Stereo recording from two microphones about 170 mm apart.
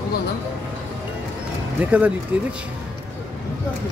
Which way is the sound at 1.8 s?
10° right (ahead or behind).